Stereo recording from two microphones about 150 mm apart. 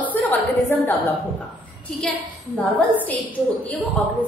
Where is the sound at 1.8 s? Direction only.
5° left (ahead or behind).